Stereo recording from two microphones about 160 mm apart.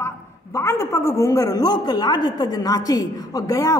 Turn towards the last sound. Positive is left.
turn(degrees=20)  # may be behind; listen again after turning